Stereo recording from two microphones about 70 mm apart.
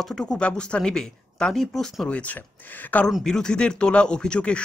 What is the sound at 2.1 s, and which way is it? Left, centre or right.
Speech, left.